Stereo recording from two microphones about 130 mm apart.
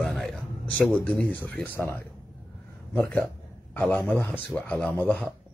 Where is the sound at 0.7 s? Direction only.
15° left (ahead or behind).